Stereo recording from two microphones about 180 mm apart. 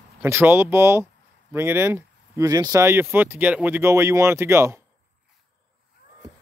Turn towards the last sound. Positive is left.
turn(degrees=-15)  # may be behind; listen again after turning